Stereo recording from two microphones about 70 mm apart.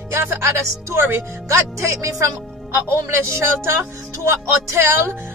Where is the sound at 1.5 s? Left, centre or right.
Right.